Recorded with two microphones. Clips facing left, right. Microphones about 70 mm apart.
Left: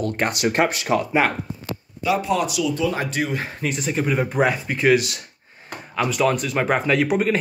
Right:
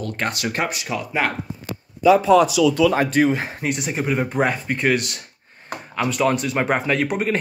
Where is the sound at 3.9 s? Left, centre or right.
Centre.